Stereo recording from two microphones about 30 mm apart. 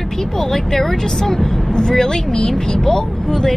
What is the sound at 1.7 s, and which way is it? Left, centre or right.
Speech, left.